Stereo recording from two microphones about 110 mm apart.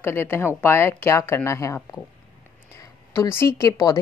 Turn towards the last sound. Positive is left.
turn(degrees=30)  # may be behind; listen again after turning